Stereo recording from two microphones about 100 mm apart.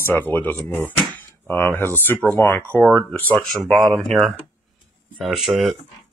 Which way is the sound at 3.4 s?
5° left (ahead or behind).